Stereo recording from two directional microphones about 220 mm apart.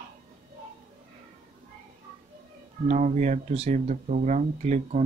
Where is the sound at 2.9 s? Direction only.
35° right (ahead or behind).